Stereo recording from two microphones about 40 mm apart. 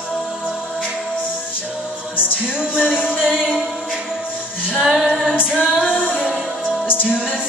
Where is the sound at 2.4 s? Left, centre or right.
Right.